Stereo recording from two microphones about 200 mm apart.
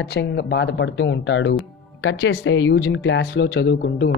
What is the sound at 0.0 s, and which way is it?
Speech, 55° left (ahead or behind).